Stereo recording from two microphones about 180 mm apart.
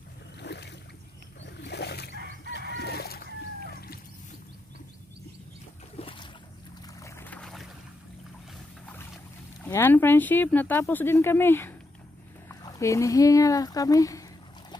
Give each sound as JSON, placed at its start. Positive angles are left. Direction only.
{"t": 0.4, "sound": "boat", "side_deg": 70}
{"t": 1.4, "sound": "wild animals", "side_deg": 70}
{"t": 2.7, "sound": "a sound", "side_deg": 65}
{"t": 5.9, "sound": "boat", "side_deg": 30}
{"t": 7.0, "sound": "boat", "side_deg": 15}
{"t": 9.7, "sound": "speech", "side_deg": 10}